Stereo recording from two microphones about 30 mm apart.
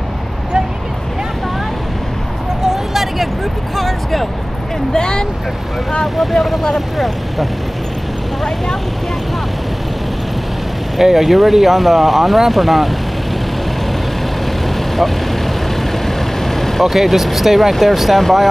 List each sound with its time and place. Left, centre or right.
2.6 s vehicle: centre
3.7 s music: centre
4.9 s speech: left
6.1 s speech: centre
11.0 s speech: centre
16.1 s vehicle: centre
16.9 s speech: centre